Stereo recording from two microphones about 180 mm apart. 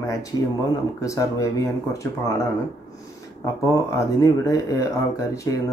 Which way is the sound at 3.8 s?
15° left (ahead or behind).